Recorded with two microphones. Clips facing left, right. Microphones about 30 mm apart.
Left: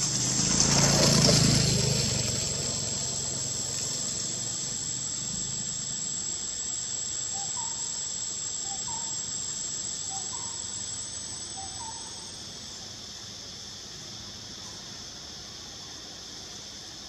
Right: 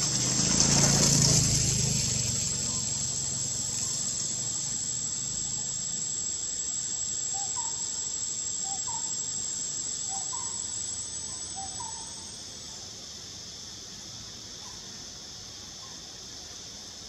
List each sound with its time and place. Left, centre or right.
0.0 s a sound: centre
0.7 s vehicle: centre
1.0 s vehicle: left; by 4.7 s centre